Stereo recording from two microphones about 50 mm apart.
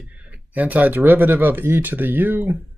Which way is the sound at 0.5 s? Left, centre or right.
Right.